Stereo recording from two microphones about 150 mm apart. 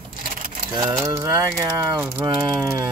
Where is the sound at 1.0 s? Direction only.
20° right (ahead or behind).